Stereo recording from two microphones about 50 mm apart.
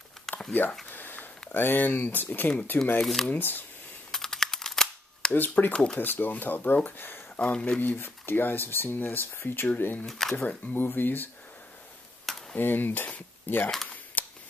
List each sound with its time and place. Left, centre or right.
0.3 s a sound: centre
0.8 s a sound: left
1.5 s speech: left
3.0 s speech: centre
3.3 s speech: left
4.1 s camera: centre
5.7 s speech: centre
5.9 s speech: left
7.3 s speech: left
7.8 s speech: left
10.0 s speech: centre
10.7 s speech: left
12.5 s speech: left
14.2 s a sound: left